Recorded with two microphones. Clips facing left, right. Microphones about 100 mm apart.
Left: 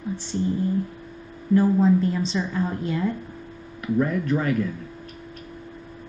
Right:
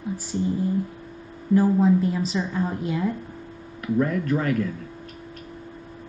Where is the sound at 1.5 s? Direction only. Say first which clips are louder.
Even; 10° right (ahead or behind).